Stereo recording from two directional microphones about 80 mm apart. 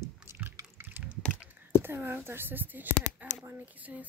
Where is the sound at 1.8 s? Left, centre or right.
Right.